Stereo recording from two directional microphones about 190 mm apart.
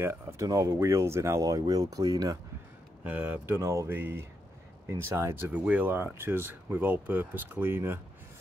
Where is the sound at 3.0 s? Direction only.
10° right (ahead or behind).